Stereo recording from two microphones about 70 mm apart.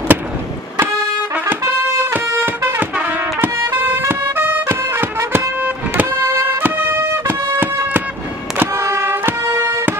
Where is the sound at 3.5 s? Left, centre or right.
Right.